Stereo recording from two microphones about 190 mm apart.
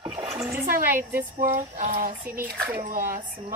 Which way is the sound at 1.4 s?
45° right (ahead or behind).